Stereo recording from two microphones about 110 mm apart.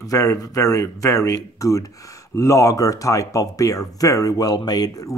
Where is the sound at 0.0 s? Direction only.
30° left (ahead or behind).